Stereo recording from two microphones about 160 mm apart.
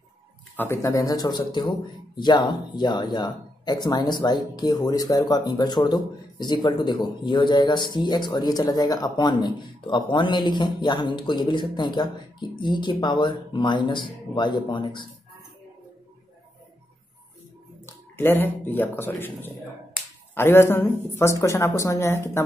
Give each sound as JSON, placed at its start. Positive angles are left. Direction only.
{"t": 0.6, "sound": "speech", "side_deg": 15}
{"t": 17.8, "sound": "speech", "side_deg": 15}